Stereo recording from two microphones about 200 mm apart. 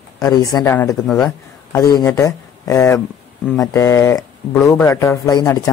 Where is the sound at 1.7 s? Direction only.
15° left (ahead or behind).